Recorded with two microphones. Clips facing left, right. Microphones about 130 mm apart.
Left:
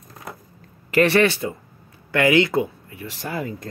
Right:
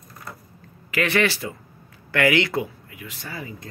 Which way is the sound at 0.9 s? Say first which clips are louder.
Left 5 dB; 30° left (ahead or behind).